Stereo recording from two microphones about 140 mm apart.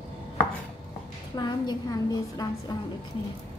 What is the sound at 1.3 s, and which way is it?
A woman's voice, 30° left (ahead or behind).